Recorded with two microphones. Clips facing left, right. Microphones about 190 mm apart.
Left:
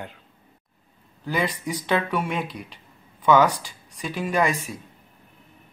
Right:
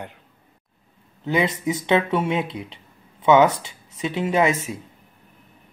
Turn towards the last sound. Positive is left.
turn(degrees=-20)  # may be behind; listen again after turning